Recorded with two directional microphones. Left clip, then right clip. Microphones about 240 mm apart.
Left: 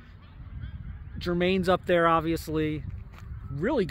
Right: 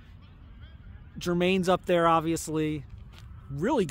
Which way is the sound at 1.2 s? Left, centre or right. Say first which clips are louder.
Even; centre.